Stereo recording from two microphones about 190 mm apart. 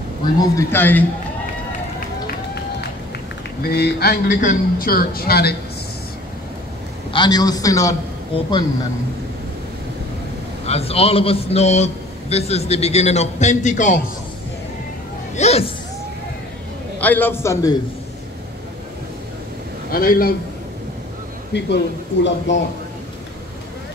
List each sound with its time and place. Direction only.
0.4 s a man's voice: 15° left (ahead or behind)
3.6 s a man's voice: 55° left (ahead or behind)
7.1 s a man's voice: 25° left (ahead or behind)
10.7 s a man's voice: 30° left (ahead or behind)
15.3 s speech: 35° left (ahead or behind)
17.0 s a man's voice: 10° left (ahead or behind)
19.9 s a man's voice: 50° left (ahead or behind)
21.5 s a man's voice: 65° left (ahead or behind)